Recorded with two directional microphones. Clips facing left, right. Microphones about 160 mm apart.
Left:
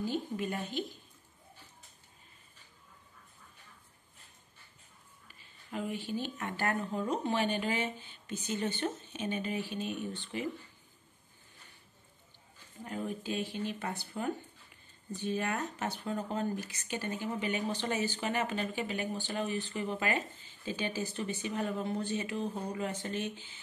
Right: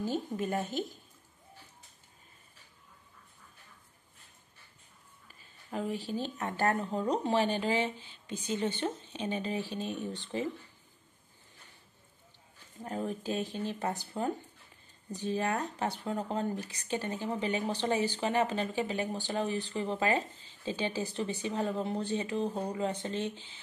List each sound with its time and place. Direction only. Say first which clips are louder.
0.0 s a woman's voice: right 1 dB; 40° right (ahead or behind)
5.7 s speech: right 2 dB; 35° right (ahead or behind)
12.8 s speech: right 2 dB; 40° right (ahead or behind)